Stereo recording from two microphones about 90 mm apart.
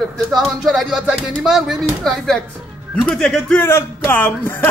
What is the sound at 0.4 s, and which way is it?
A man's voice, centre (ahead or behind).